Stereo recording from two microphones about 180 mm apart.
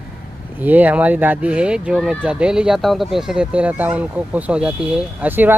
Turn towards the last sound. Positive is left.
turn(degrees=-10)  # may be behind; listen again after turning